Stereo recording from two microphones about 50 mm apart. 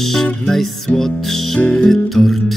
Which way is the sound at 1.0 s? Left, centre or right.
Centre.